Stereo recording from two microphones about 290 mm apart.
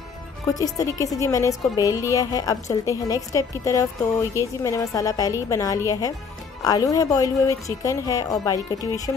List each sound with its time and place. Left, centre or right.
0.5 s a woman's voice: centre